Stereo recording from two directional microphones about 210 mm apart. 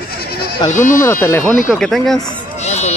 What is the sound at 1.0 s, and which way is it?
Speech, 10° left (ahead or behind).